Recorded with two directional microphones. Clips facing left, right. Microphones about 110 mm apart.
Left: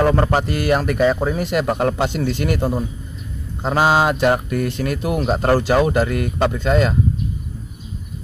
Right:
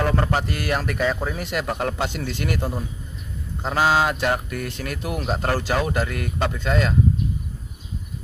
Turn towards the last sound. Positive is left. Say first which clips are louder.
# left 5 dB
turn(degrees=20)  # may be behind; listen again after turning